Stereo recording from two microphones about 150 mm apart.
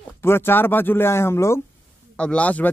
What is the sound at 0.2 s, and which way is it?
Speech, 15° left (ahead or behind).